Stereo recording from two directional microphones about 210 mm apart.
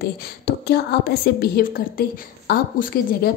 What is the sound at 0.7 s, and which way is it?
A woman's voice, 50° left (ahead or behind).